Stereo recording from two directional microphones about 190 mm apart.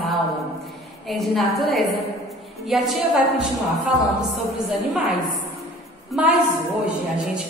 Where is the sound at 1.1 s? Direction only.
Centre (ahead or behind).